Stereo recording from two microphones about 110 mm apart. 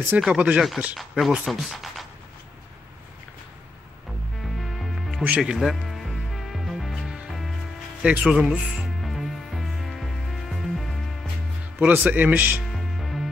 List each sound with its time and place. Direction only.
0.2 s speech: 10° right (ahead or behind)
4.6 s music: centre (ahead or behind)
8.0 s insect: 10° right (ahead or behind)
11.8 s speech: 15° right (ahead or behind)
12.7 s music: centre (ahead or behind)